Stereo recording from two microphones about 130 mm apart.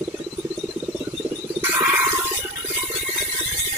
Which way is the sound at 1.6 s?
20° right (ahead or behind).